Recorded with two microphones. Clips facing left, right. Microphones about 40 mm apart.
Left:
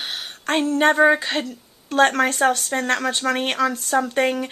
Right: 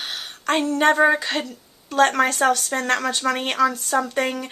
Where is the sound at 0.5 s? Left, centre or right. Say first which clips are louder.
Even; centre.